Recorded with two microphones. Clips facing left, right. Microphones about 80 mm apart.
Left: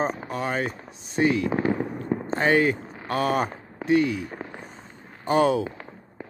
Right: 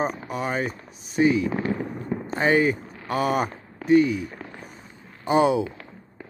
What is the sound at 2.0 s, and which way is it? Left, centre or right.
Speech, centre.